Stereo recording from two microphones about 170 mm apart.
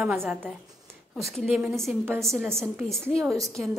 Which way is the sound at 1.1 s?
Centre (ahead or behind).